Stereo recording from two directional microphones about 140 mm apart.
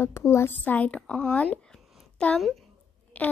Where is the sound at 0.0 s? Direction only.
20° left (ahead or behind).